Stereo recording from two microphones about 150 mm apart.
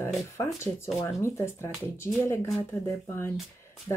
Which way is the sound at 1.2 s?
15° left (ahead or behind).